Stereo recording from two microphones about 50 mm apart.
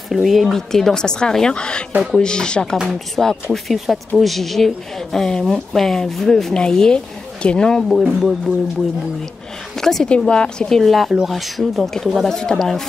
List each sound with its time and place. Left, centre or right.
0.1 s a woman's voice: centre
3.2 s a woman's voice: centre
7.9 s speech: centre
9.8 s a sound: centre
10.0 s speech: centre
10.7 s a woman's voice: centre